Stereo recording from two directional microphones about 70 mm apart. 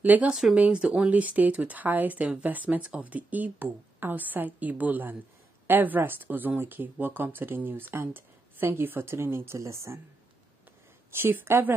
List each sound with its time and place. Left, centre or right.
0.0 s speech: right
0.3 s speech: centre; by 9.9 s right
11.1 s speech: right